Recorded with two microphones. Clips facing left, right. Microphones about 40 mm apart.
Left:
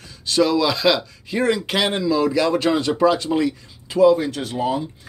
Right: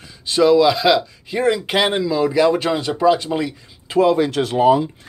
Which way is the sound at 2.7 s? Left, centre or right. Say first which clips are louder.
Right 1 dB; centre.